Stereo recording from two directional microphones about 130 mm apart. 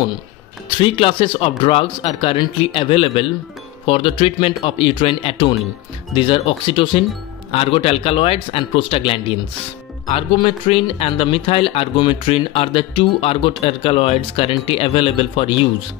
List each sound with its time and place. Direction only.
0.7 s speech: 45° left (ahead or behind)